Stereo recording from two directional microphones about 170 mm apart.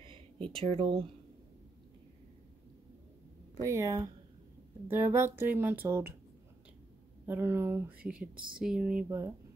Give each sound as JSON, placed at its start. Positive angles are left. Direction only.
{"t": 0.0, "sound": "a sound", "side_deg": -30}
{"t": 0.7, "sound": "speech", "side_deg": -30}
{"t": 3.6, "sound": "speech", "side_deg": -15}
{"t": 7.2, "sound": "speech", "side_deg": -15}